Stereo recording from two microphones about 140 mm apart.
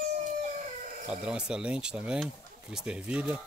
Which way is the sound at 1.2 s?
5° right (ahead or behind).